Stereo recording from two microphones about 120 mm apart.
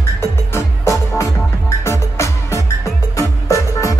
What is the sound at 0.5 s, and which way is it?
Music, 25° left (ahead or behind).